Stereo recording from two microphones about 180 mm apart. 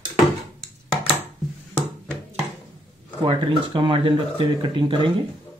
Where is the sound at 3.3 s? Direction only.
25° right (ahead or behind).